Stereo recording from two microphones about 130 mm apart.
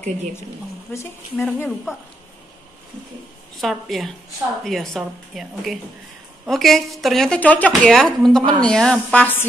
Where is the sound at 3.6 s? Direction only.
Centre (ahead or behind).